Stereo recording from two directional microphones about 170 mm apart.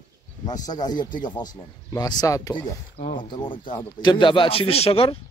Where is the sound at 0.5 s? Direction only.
25° left (ahead or behind).